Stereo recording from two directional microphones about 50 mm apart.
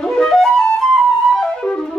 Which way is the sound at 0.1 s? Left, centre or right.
Centre.